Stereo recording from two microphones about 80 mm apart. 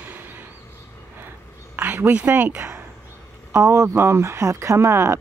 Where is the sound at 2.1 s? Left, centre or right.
Centre.